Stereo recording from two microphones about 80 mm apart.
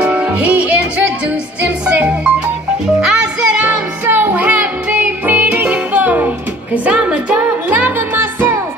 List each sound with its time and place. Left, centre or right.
0.0 s music: centre
3.1 s music: centre
4.1 s music: right